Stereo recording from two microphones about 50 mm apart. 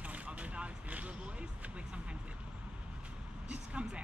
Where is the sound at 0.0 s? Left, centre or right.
Right.